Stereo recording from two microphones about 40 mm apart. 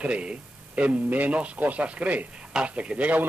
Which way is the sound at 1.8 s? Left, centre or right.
Right.